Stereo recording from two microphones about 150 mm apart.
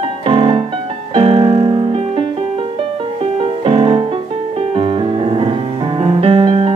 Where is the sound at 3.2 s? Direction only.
40° right (ahead or behind).